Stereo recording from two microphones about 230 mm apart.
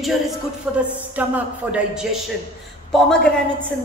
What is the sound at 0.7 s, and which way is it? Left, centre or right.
Speech, centre.